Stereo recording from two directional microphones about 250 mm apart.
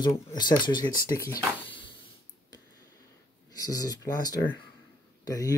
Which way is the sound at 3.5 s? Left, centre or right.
Centre.